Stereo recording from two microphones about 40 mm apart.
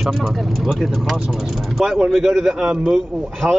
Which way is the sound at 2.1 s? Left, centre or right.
Centre.